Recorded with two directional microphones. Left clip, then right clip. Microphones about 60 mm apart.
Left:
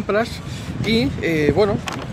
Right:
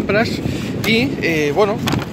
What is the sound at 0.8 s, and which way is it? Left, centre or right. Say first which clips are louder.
Speech: right 3 dB; left.